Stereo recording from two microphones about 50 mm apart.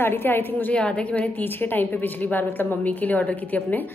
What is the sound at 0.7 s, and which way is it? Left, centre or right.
Speech, left.